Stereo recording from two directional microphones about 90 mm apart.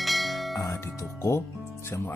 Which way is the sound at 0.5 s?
40° left (ahead or behind).